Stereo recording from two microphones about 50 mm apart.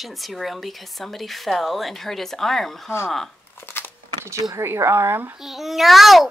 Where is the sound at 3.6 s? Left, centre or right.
Left.